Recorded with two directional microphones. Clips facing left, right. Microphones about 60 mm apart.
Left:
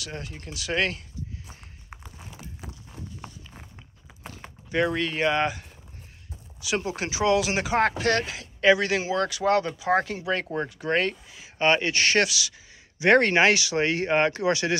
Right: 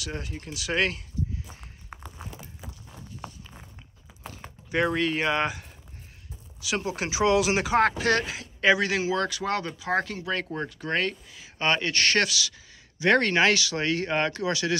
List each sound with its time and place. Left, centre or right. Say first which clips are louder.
0.0 s speech: right 1 dB; centre
1.5 s walk: right 1 dB; centre
2.9 s walk: right 1 dB; centre
4.6 s speech: even; centre
7.6 s speech: right 1 dB; centre
13.0 s speech: left 3 dB; left